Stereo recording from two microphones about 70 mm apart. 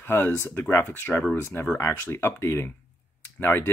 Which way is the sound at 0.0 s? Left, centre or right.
Left.